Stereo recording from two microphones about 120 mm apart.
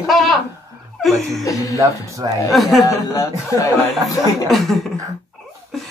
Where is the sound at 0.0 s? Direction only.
Centre (ahead or behind).